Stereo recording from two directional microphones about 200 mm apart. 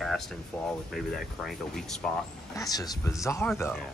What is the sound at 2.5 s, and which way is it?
Speech, 15° left (ahead or behind).